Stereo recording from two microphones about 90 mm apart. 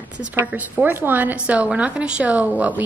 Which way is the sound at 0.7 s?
20° right (ahead or behind).